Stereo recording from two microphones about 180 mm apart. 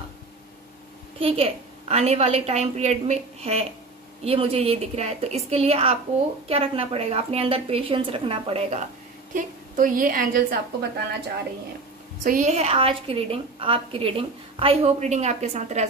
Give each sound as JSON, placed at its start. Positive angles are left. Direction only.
{"t": 1.2, "sound": "a woman's voice", "side_deg": -35}
{"t": 9.3, "sound": "a woman's voice", "side_deg": -50}
{"t": 12.2, "sound": "a woman's voice", "side_deg": -45}